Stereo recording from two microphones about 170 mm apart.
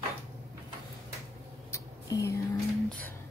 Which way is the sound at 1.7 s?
20° left (ahead or behind).